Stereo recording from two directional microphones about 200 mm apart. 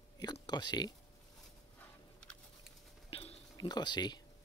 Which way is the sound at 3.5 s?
20° left (ahead or behind).